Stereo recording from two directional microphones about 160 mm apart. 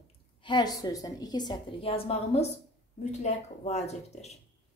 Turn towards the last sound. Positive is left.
turn(degrees=45)  # may be behind; listen again after turning